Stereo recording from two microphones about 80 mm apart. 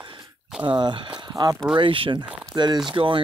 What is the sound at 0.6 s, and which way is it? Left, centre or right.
Speech, right.